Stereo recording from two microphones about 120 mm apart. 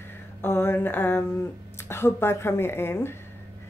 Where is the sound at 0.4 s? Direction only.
20° left (ahead or behind).